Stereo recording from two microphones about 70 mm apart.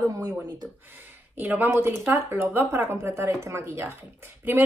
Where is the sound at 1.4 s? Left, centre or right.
Right.